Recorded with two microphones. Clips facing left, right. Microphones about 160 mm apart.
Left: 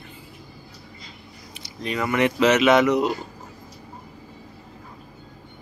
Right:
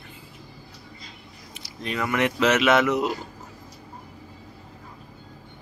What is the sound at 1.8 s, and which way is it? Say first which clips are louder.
Speech: left 3 dB; centre (ahead or behind).